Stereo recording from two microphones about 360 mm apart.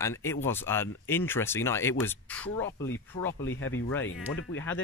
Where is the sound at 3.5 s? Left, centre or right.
Left.